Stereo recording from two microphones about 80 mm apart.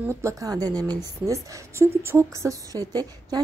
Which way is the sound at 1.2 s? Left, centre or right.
Right.